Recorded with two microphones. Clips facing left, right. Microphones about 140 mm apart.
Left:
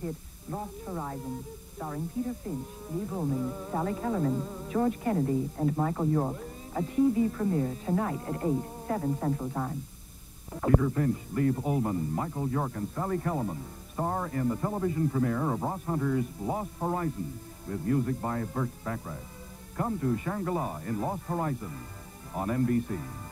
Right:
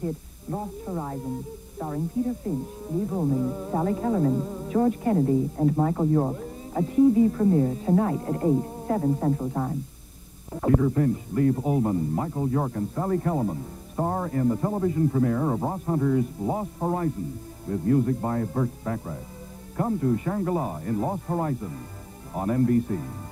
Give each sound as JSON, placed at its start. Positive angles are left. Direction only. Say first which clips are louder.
{"t": 0.5, "sound": "a woman's voice", "louder": "right 5 dB", "side_deg": -30}